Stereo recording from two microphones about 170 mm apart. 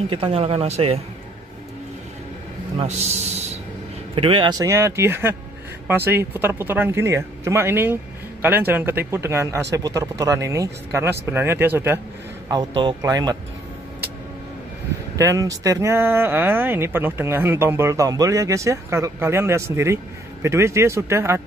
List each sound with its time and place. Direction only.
0.1 s speech: 35° right (ahead or behind)
2.8 s speech: 40° right (ahead or behind); by 12.0 s 15° right (ahead or behind)
12.4 s speech: 25° right (ahead or behind)
15.1 s speech: 20° right (ahead or behind)